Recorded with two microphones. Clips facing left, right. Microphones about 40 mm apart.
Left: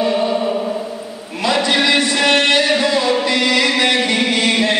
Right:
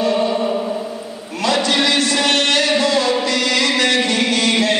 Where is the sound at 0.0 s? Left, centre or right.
Centre.